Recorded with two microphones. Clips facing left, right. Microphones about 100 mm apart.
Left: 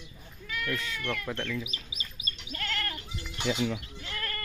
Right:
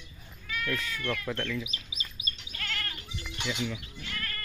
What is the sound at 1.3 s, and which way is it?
Speech, 10° left (ahead or behind).